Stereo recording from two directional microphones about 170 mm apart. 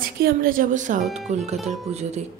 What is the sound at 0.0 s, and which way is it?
A woman's voice, 55° right (ahead or behind).